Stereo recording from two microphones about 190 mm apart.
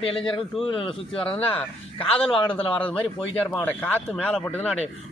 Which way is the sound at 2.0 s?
30° left (ahead or behind).